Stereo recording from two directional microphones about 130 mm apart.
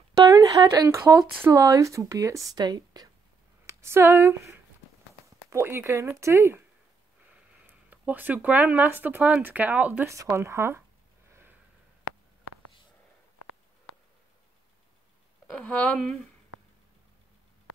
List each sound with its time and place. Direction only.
0.1 s speech: 25° right (ahead or behind)
3.6 s speech: 20° right (ahead or behind)
10.0 s speech: 20° right (ahead or behind)
15.6 s speech: 10° left (ahead or behind)